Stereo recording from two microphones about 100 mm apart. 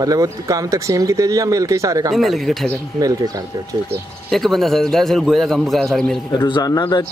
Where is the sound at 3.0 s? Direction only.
35° right (ahead or behind).